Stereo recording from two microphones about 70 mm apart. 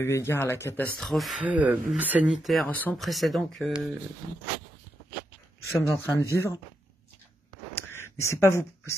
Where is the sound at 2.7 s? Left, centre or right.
Left.